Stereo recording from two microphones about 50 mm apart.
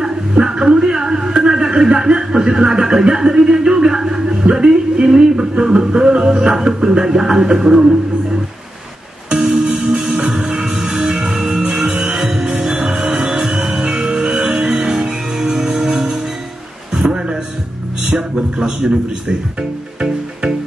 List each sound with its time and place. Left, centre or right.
0.0 s speech: centre
5.5 s music: centre
9.3 s music: centre
13.0 s music: centre
16.9 s a sound: centre